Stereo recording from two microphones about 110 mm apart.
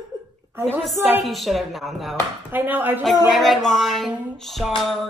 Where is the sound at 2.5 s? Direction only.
15° right (ahead or behind).